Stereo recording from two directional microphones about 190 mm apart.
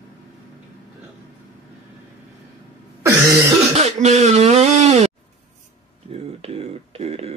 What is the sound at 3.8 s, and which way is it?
Speech, 35° right (ahead or behind).